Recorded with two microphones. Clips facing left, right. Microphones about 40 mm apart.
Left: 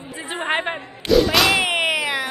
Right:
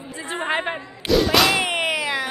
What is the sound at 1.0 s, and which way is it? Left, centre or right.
Speech, centre.